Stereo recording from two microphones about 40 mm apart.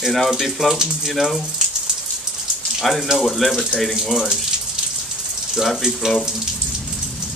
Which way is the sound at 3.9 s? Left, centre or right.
Centre.